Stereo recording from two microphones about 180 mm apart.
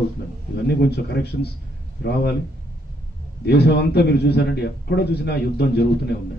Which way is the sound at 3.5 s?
65° left (ahead or behind).